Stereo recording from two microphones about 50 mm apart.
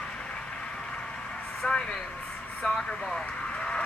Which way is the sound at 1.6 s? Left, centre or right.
Centre.